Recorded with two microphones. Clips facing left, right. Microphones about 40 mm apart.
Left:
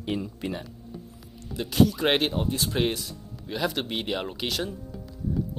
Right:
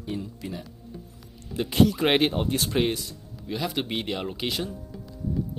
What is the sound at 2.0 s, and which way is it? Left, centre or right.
Speech, centre.